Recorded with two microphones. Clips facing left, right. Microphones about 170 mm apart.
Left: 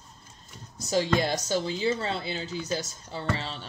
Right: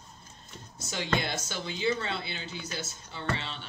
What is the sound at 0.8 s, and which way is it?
Speech, 35° left (ahead or behind).